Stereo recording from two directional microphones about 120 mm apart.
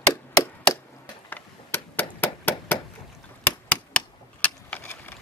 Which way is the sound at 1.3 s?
15° left (ahead or behind).